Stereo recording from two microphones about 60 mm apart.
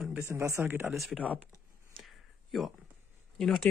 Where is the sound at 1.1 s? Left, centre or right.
Right.